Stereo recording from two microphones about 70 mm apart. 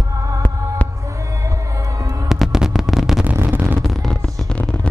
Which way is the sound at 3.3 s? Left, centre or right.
Right.